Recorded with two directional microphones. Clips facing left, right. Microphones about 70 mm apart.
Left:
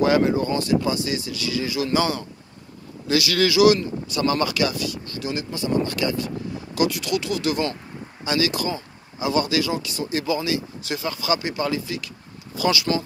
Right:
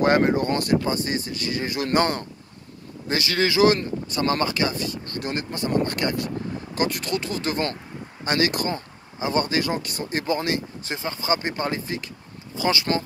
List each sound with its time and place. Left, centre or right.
0.0 s speech: right
3.1 s speech: right
10.9 s speech: right